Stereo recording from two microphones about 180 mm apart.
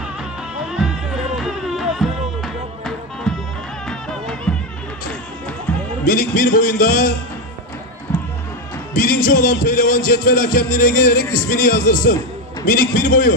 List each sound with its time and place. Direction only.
0.7 s music: 5° right (ahead or behind)
5.7 s music: 5° left (ahead or behind)
6.0 s music: 50° left (ahead or behind)
8.9 s music: 50° left (ahead or behind)